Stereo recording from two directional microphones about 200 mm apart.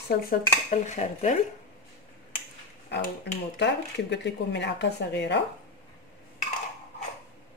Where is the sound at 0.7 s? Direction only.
35° left (ahead or behind).